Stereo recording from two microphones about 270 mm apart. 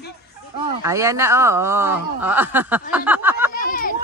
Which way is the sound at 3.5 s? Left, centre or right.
Left.